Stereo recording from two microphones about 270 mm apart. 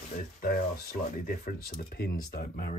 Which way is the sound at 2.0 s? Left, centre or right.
Left.